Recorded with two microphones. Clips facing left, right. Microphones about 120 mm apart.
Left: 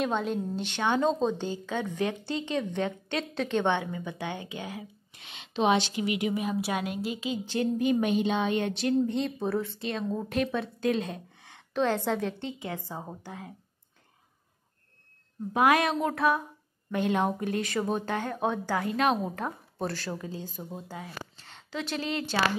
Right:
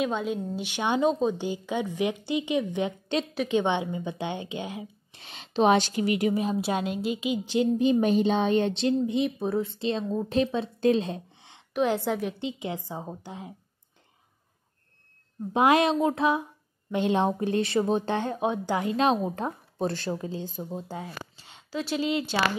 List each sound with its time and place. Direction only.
0.0 s a woman's voice: centre (ahead or behind); by 5.2 s 20° right (ahead or behind)
5.2 s speech: 35° right (ahead or behind); by 8.0 s 20° right (ahead or behind)
8.0 s a woman's voice: 35° right (ahead or behind)
9.0 s speech: 15° right (ahead or behind)
11.7 s a woman's voice: 10° right (ahead or behind)
15.5 s speech: 25° right (ahead or behind)
21.4 s a sound: 10° right (ahead or behind)